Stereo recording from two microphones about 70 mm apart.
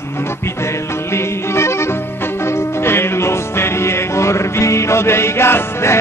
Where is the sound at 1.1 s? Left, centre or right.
Left.